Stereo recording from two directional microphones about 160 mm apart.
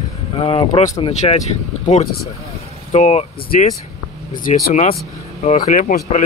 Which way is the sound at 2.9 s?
45° left (ahead or behind).